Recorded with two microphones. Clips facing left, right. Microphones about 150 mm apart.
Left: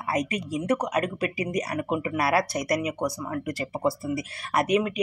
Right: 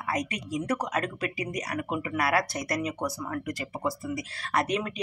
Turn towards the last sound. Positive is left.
turn(degrees=20)  # may be behind; listen again after turning